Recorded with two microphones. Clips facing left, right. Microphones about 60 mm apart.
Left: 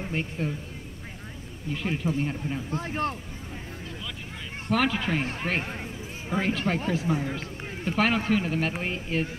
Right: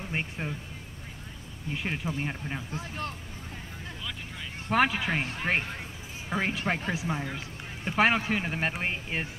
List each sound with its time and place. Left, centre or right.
0.1 s speech: right
1.8 s speech: centre
2.7 s speech: left
4.6 s speech: centre